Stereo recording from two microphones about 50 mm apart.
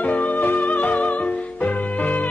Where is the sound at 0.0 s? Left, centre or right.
Left.